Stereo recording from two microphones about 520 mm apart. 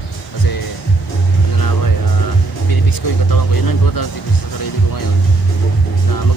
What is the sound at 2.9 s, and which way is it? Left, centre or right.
Speech, left.